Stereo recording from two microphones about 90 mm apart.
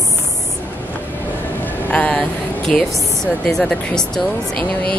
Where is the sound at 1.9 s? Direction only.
15° left (ahead or behind).